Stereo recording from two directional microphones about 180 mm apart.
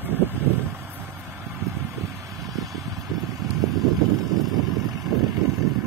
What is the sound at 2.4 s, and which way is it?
Vehicle, centre (ahead or behind).